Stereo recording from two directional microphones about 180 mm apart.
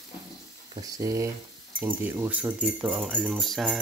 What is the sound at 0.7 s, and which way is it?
Speech, 20° right (ahead or behind).